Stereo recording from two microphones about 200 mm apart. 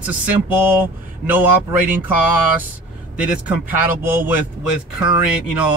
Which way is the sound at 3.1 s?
5° right (ahead or behind).